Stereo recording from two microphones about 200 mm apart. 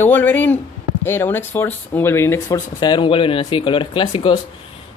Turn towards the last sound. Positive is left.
turn(degrees=25)  # may be behind; listen again after turning